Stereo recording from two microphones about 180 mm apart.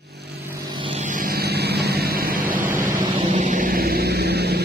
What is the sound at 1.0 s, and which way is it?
Vehicle, 50° right (ahead or behind).